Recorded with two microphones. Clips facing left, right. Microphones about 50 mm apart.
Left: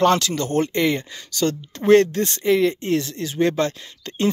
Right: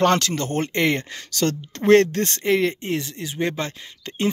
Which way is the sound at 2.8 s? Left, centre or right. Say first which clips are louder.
Left 4 dB; right.